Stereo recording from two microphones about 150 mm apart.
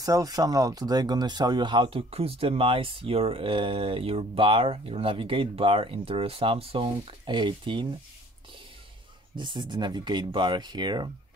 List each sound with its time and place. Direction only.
0.0 s speech: 25° right (ahead or behind)
9.3 s speech: 30° right (ahead or behind)